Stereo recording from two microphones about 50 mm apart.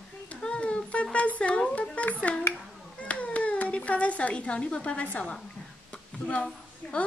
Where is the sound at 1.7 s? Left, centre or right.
Left.